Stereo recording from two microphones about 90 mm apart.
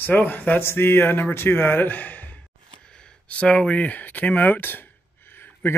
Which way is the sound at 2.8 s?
10° left (ahead or behind).